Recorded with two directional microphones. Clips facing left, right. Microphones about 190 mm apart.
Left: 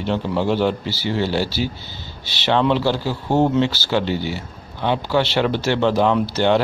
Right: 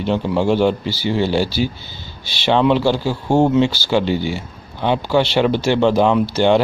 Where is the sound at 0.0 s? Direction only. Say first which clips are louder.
Right 3 dB; 15° right (ahead or behind).